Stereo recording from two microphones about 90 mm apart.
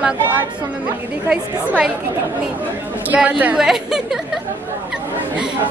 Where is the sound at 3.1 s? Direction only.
15° right (ahead or behind).